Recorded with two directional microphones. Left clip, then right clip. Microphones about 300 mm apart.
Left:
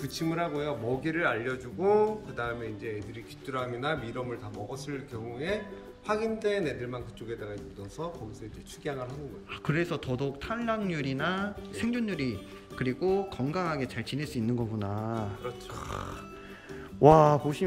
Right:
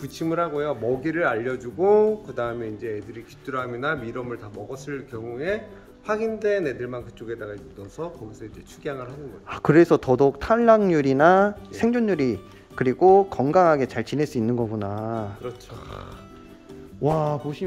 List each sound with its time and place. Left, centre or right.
0.0 s speech: centre; by 2.9 s right
3.4 s speech: centre
8.8 s music: centre
9.5 s speech: centre
17.0 s music: centre